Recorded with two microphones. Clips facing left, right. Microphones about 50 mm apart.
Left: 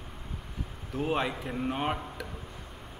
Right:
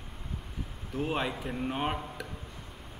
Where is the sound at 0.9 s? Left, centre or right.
Centre.